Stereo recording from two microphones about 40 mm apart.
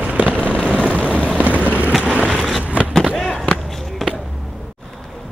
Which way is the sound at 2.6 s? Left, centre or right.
Right.